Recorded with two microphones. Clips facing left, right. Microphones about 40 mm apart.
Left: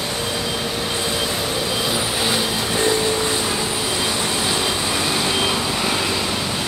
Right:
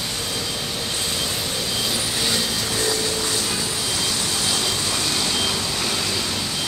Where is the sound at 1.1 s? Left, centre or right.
Centre.